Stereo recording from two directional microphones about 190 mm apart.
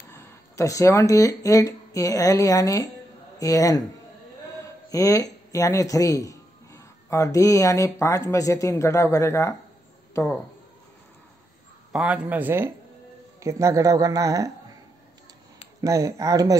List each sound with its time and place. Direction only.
0.1 s a man's voice: 15° left (ahead or behind)
4.8 s speech: 20° left (ahead or behind)
11.9 s speech: 5° right (ahead or behind)
15.8 s speech: 15° right (ahead or behind)